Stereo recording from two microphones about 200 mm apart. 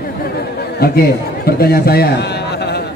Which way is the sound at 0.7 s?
50° left (ahead or behind).